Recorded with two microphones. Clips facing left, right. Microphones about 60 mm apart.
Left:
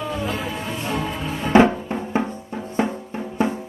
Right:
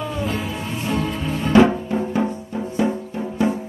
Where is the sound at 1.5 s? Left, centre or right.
Left.